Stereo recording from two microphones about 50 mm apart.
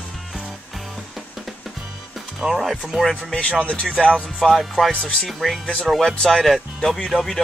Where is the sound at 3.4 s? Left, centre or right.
Left.